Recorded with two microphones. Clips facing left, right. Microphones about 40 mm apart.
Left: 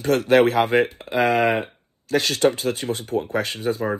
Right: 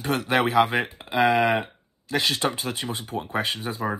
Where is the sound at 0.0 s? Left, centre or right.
Right.